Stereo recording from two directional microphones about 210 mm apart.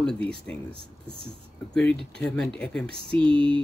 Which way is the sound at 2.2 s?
5° left (ahead or behind).